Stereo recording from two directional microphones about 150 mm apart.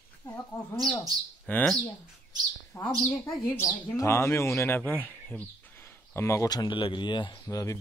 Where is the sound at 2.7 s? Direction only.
20° left (ahead or behind).